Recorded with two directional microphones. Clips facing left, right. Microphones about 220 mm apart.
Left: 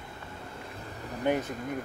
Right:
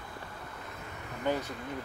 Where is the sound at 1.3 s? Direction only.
15° left (ahead or behind).